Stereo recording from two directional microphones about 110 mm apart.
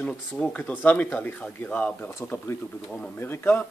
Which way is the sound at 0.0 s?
10° left (ahead or behind).